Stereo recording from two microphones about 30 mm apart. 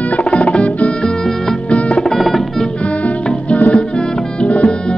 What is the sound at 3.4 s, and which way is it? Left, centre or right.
Music, left.